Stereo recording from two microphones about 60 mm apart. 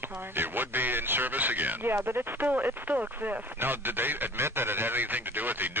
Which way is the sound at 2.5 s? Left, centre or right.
Right.